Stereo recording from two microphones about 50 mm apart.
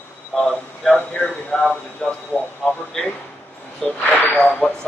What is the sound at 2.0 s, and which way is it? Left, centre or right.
Speech, centre.